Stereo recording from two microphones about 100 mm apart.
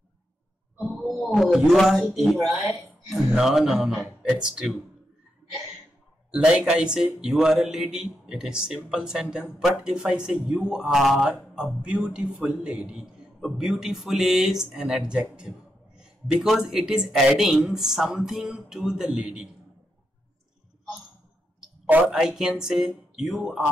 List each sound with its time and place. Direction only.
0.8 s a man's voice: centre (ahead or behind)
6.3 s a man's voice: 10° right (ahead or behind)
21.8 s speech: 15° right (ahead or behind)
22.1 s speech: 5° right (ahead or behind)